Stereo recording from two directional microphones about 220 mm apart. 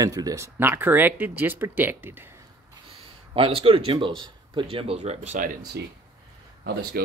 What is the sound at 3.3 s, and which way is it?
Speech, 25° right (ahead or behind).